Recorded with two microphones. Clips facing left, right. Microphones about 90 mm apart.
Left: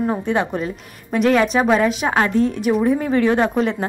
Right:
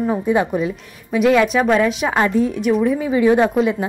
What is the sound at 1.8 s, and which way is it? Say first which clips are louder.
A woman's voice: even; centre (ahead or behind).